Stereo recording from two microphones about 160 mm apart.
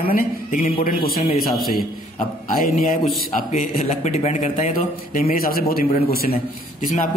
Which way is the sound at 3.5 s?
45° left (ahead or behind).